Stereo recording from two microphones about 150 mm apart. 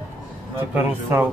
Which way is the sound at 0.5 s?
15° right (ahead or behind).